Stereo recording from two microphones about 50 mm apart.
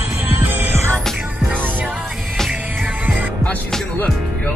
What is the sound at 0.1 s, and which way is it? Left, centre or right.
Music, right.